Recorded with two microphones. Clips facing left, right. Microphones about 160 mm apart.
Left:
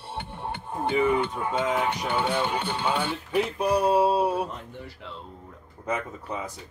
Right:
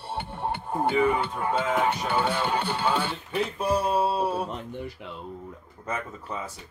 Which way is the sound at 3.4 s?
15° left (ahead or behind).